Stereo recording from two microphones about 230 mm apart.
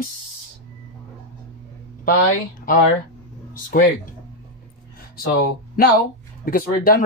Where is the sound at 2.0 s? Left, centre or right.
Left.